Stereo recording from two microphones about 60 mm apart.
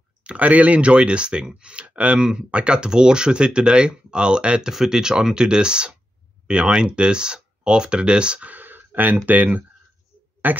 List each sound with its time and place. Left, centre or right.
0.2 s speech: right